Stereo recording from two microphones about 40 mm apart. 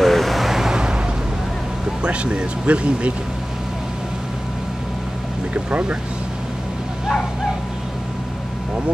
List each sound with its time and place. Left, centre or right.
0.0 s vehicle: centre
2.0 s speech: right
5.5 s speech: right